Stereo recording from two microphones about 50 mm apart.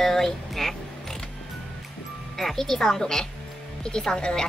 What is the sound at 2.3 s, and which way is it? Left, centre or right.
Speech, centre.